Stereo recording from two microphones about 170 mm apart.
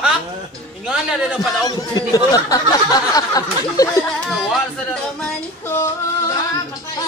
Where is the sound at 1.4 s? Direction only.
20° left (ahead or behind).